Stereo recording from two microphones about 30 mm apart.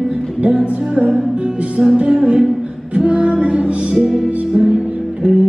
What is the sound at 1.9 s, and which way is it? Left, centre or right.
Speech, right.